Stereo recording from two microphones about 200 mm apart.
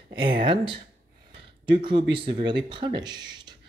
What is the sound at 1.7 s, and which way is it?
Speech, 25° right (ahead or behind).